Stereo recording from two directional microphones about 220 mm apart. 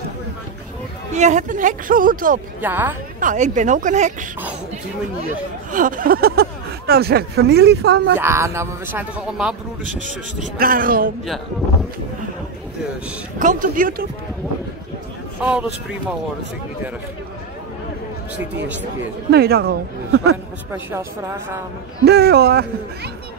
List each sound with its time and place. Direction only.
1.1 s speech: 30° right (ahead or behind)
2.6 s speech: 10° right (ahead or behind)
3.2 s speech: 35° right (ahead or behind)
5.7 s speech: 35° right (ahead or behind)
8.2 s speech: 10° right (ahead or behind)
10.6 s speech: 40° right (ahead or behind)
13.4 s speech: 35° right (ahead or behind)
15.4 s speech: 5° right (ahead or behind)
19.3 s speech: 45° right (ahead or behind)
22.0 s speech: 45° right (ahead or behind)